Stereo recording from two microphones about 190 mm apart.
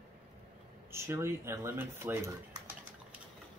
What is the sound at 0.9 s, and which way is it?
Speech, 15° right (ahead or behind).